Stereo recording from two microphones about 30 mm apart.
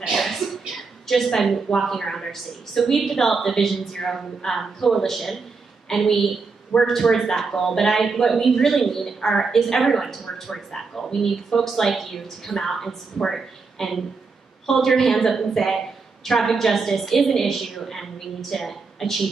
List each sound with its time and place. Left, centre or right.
0.1 s a sound: centre
1.3 s a woman's voice: centre
6.7 s a woman's voice: centre